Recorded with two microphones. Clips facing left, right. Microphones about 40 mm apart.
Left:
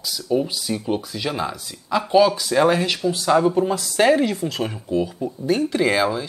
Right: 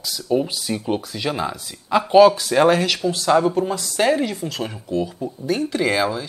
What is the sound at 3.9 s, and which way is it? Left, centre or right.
Speech, centre.